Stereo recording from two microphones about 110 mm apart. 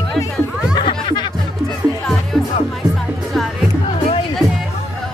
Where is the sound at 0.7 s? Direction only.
45° left (ahead or behind).